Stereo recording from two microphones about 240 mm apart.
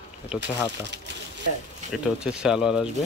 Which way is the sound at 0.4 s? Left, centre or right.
Right.